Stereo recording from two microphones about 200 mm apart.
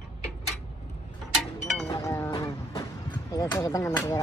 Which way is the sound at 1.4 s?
Centre (ahead or behind).